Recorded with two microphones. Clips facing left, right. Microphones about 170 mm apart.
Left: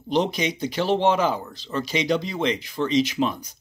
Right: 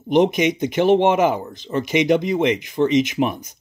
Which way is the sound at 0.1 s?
20° right (ahead or behind).